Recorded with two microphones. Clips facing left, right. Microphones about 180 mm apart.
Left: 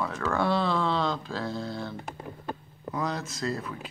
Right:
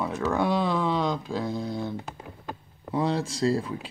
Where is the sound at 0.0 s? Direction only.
15° right (ahead or behind).